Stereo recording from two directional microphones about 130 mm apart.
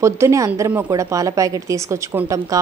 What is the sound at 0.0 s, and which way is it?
A woman's voice, 25° right (ahead or behind).